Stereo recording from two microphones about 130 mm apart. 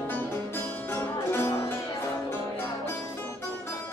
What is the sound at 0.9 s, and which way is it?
Music, 15° left (ahead or behind).